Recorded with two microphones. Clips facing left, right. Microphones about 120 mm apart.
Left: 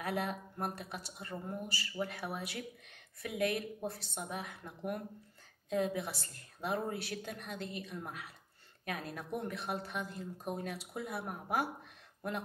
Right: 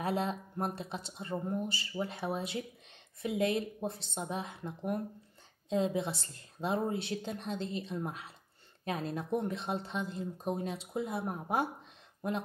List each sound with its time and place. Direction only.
0.0 s speech: 25° right (ahead or behind)